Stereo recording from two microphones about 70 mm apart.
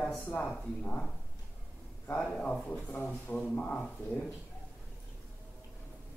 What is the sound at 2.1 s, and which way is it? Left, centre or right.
Speech, centre.